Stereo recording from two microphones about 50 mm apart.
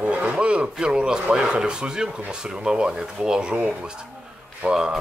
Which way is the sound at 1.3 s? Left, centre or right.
Centre.